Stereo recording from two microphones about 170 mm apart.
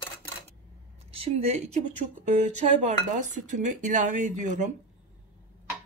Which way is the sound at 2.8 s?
45° right (ahead or behind).